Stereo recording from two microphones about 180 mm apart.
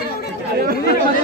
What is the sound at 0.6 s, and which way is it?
Chatter, 60° right (ahead or behind).